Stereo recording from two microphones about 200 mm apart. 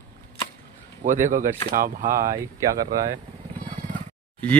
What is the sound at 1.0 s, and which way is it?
Speech, 40° right (ahead or behind).